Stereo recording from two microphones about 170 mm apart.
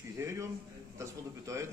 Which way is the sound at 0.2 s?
15° right (ahead or behind).